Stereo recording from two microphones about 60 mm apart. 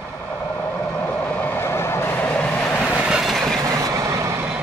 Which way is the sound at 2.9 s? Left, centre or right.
Centre.